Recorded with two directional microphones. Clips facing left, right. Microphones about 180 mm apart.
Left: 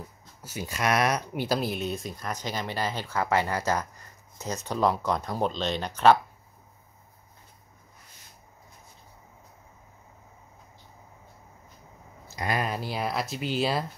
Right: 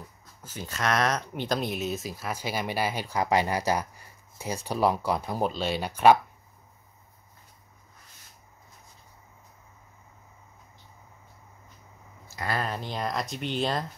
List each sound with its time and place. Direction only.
0.4 s speech: 10° left (ahead or behind); by 6.1 s 10° right (ahead or behind)
12.3 s speech: 15° left (ahead or behind)